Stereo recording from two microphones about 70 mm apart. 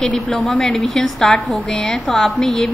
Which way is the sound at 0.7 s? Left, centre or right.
Centre.